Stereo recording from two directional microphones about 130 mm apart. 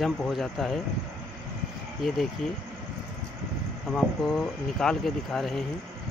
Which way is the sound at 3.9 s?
Centre (ahead or behind).